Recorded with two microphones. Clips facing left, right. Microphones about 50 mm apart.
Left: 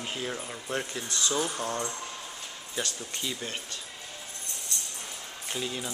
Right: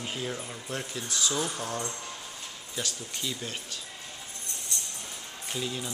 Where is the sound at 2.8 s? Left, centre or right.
Centre.